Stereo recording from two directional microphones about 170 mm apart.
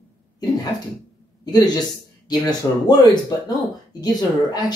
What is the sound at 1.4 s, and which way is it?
Speech, 25° left (ahead or behind).